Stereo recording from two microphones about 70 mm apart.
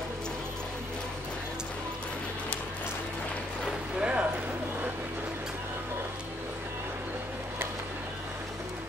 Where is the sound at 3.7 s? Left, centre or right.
Centre.